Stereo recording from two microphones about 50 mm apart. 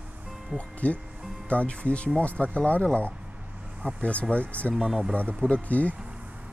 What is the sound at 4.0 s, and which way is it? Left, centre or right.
Speech, left.